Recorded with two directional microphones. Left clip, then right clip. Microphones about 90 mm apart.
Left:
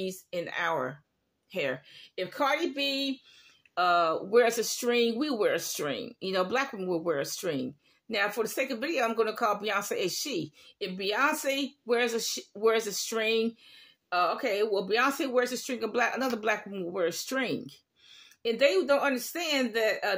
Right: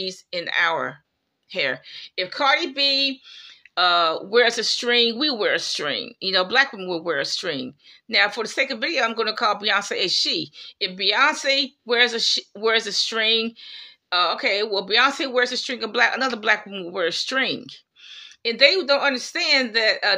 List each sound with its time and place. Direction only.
0.0 s speech: 30° left (ahead or behind)
3.7 s speech: 35° left (ahead or behind)
5.9 s speech: 25° left (ahead or behind)